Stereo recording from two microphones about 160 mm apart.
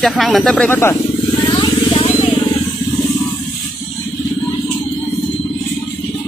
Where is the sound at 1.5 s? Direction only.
30° left (ahead or behind).